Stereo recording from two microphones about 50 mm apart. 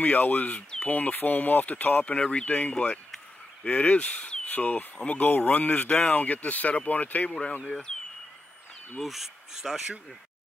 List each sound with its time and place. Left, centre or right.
0.0 s speech: left
2.1 s speech: left
2.4 s speech: left
7.6 s speech: centre
9.0 s speech: centre